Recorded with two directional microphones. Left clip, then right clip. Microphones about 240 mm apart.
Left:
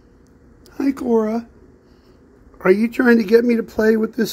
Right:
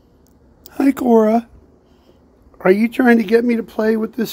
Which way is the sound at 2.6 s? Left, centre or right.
Centre.